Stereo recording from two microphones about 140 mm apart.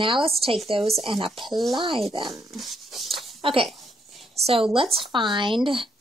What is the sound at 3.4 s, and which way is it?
Speech, 40° right (ahead or behind).